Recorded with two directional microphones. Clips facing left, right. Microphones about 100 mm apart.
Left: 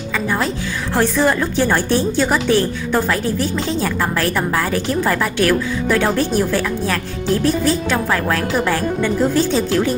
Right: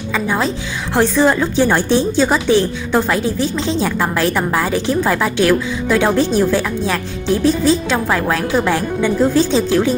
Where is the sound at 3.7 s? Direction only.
15° right (ahead or behind).